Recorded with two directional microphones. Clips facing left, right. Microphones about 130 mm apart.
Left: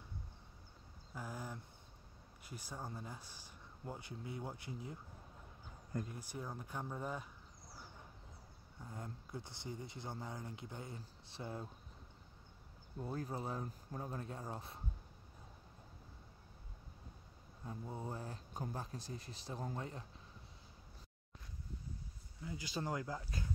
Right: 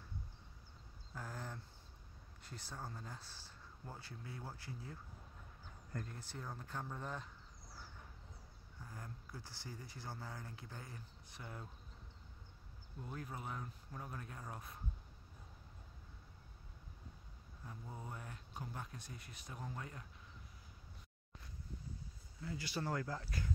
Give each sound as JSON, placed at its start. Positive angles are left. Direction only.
{"t": 1.1, "sound": "a sound", "side_deg": 10}
{"t": 2.4, "sound": "speech", "side_deg": 10}
{"t": 8.8, "sound": "speech", "side_deg": 25}
{"t": 13.0, "sound": "speech", "side_deg": 35}
{"t": 17.6, "sound": "speech", "side_deg": 25}
{"t": 22.4, "sound": "speech", "side_deg": 15}